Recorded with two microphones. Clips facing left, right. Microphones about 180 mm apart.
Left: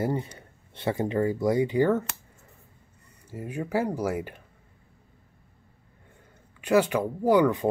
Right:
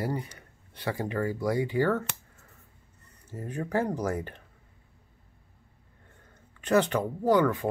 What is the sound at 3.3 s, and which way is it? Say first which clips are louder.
Speech: left 2 dB; 10° left (ahead or behind).